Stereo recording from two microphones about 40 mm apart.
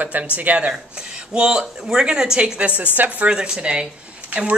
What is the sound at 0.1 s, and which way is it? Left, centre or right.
Speech, right.